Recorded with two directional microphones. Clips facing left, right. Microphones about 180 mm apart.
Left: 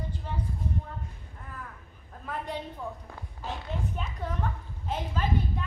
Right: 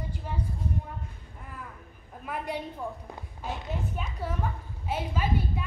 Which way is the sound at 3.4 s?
5° right (ahead or behind).